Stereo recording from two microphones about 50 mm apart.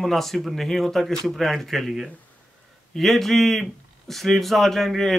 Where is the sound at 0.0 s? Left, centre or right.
Centre.